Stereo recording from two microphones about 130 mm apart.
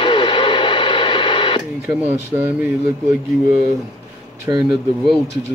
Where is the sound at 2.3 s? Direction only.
15° right (ahead or behind).